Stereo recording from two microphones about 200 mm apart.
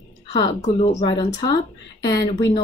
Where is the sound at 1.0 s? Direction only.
20° left (ahead or behind).